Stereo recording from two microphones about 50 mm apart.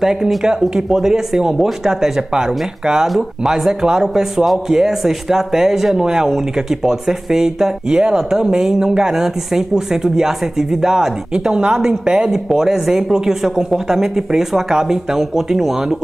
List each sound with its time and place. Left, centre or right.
0.0 s a man's voice: centre